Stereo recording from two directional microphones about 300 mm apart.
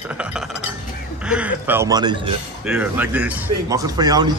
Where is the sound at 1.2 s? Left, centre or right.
Centre.